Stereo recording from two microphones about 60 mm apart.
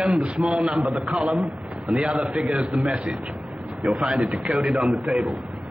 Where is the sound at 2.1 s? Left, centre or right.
Centre.